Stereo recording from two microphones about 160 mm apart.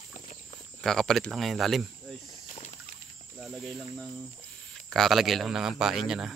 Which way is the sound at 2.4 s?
45° left (ahead or behind).